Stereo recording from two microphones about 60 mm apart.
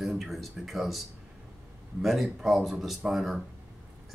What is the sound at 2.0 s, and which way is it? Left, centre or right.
Speech, centre.